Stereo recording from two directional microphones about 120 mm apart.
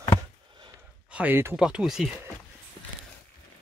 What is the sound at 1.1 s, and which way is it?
Speech, 15° right (ahead or behind).